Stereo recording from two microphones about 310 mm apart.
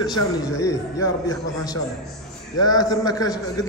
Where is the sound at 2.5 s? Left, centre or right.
Centre.